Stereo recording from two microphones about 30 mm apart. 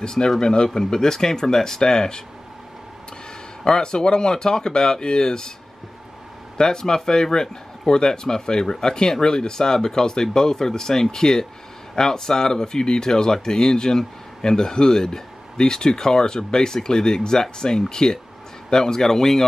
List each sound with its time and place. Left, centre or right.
0.0 s speech: left
3.6 s speech: left
6.6 s a man's voice: left